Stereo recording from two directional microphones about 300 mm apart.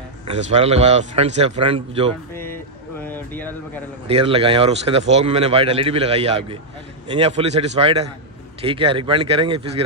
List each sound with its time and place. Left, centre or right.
0.3 s speech: right
2.3 s a sound: centre
4.1 s speech: centre